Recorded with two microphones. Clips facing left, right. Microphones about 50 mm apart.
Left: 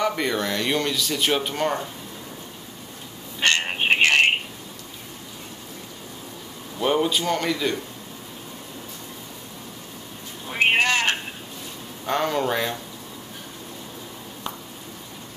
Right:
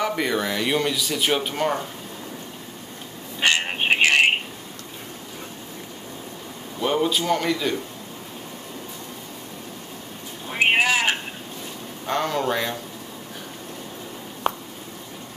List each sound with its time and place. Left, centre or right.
0.0 s speech: centre
3.3 s telephone: centre
6.8 s speech: centre
10.5 s a sound: centre
12.1 s speech: centre
14.5 s a sound: right